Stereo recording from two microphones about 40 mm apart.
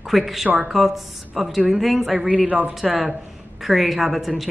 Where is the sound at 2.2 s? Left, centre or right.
Right.